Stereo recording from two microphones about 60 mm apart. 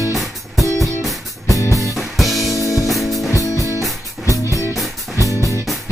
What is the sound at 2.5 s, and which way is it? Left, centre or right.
Music, left.